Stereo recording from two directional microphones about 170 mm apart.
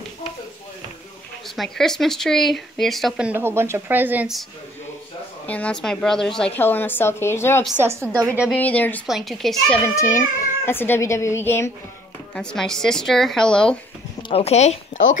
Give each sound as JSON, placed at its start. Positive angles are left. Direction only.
{"t": 1.6, "sound": "speech", "side_deg": 0}
{"t": 5.5, "sound": "a woman's voice", "side_deg": 5}
{"t": 7.8, "sound": "a woman's voice", "side_deg": -15}
{"t": 8.5, "sound": "a woman's voice", "side_deg": 10}
{"t": 9.8, "sound": "a woman's voice", "side_deg": 15}
{"t": 14.3, "sound": "speech", "side_deg": 40}